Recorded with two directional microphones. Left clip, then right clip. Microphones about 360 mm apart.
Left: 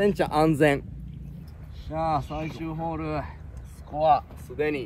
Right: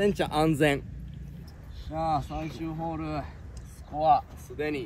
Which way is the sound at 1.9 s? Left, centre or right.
Centre.